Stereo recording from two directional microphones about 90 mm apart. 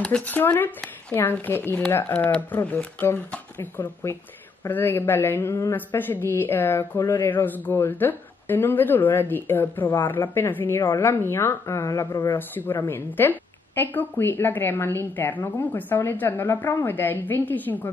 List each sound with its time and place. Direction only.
0.3 s a woman's voice: 20° left (ahead or behind); by 12.3 s 40° left (ahead or behind)
12.3 s a woman's voice: 25° left (ahead or behind)